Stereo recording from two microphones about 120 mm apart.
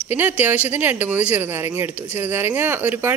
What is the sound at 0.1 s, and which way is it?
Speech, 15° right (ahead or behind).